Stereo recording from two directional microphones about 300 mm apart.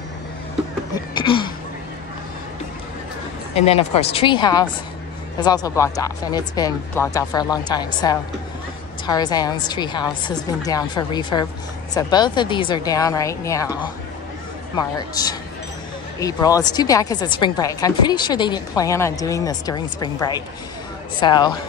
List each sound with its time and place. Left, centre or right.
0.9 s a sound: centre
3.5 s a woman's voice: centre
9.0 s a woman's voice: centre
16.2 s a woman's voice: centre